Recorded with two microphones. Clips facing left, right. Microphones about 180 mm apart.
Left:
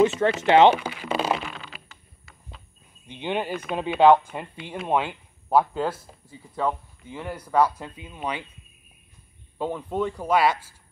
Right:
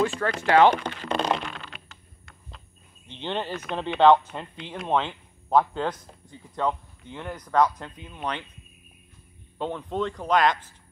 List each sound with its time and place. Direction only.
0.4 s speech: 20° left (ahead or behind)
0.7 s a sound: 5° left (ahead or behind)
3.1 s speech: 10° left (ahead or behind)
9.6 s speech: 10° left (ahead or behind)